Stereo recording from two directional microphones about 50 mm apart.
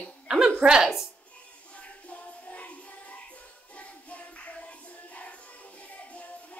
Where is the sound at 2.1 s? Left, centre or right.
Left.